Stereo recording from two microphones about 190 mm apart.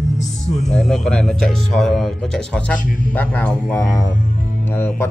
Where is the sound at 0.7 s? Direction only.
Centre (ahead or behind).